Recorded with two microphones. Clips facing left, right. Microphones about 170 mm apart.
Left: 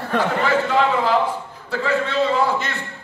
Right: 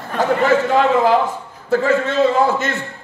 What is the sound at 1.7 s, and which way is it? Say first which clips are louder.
A man's voice: right 5 dB; 45° right (ahead or behind).